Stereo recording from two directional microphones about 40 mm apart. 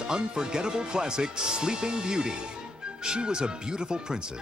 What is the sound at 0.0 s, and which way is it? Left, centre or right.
Speech, centre.